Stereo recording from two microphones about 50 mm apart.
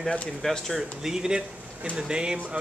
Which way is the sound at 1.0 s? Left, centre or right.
Centre.